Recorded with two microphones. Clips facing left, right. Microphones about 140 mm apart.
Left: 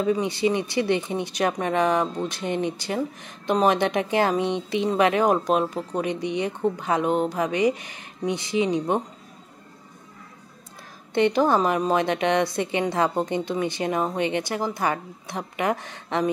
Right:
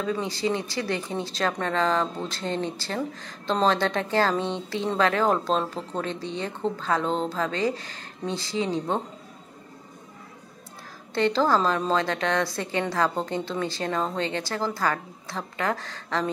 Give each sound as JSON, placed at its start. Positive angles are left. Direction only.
{"t": 0.0, "sound": "speech", "side_deg": 20}
{"t": 11.1, "sound": "a woman's voice", "side_deg": 20}